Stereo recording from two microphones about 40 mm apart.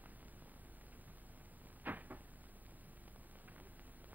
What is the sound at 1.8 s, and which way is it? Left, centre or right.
Cupboard open or close, right.